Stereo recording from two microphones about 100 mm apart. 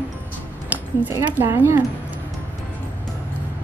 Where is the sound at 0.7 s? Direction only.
15° right (ahead or behind).